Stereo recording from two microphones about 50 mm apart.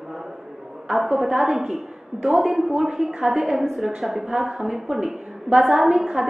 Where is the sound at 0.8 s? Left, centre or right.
Centre.